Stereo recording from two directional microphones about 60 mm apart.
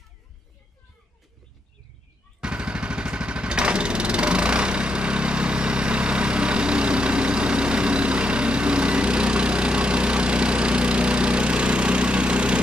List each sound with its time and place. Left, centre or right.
2.4 s vehicle: centre